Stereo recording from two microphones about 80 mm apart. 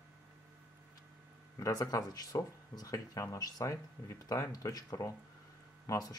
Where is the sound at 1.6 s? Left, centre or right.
Left.